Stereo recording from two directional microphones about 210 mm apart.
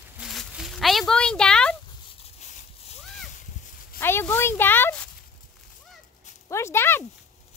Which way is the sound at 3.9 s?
10° left (ahead or behind).